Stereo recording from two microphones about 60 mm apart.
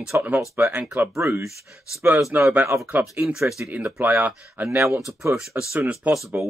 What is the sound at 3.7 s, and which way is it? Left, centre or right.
Speech, right.